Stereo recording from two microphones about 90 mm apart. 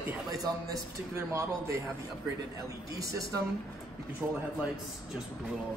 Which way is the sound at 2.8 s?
40° right (ahead or behind).